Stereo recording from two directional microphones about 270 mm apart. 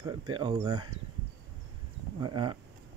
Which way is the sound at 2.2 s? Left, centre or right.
Centre.